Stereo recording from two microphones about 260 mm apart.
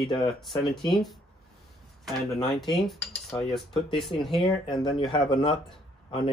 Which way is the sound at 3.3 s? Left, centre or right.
Centre.